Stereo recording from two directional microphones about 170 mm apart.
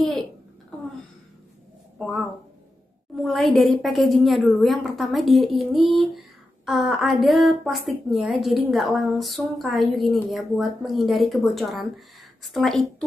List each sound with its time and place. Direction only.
3.2 s a woman's voice: centre (ahead or behind)